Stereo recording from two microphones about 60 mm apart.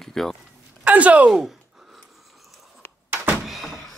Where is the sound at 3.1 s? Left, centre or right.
Right.